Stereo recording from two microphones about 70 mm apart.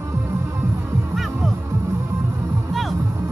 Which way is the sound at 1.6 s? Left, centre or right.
Right.